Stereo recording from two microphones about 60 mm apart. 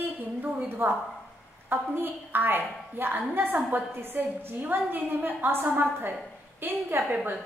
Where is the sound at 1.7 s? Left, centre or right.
Right.